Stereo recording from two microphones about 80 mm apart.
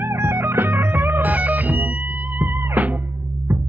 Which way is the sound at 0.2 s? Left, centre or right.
Right.